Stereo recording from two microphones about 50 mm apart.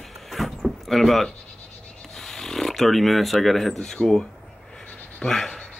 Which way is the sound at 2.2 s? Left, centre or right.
Centre.